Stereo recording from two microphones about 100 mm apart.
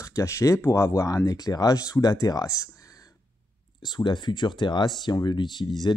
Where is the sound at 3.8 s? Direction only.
45° left (ahead or behind).